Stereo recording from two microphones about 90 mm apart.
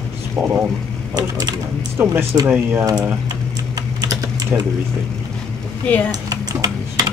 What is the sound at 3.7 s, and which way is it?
Typing, 45° right (ahead or behind).